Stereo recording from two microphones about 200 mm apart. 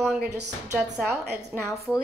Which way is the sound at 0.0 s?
5° right (ahead or behind).